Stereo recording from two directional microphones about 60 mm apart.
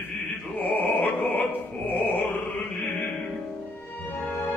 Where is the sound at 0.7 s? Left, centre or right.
Left.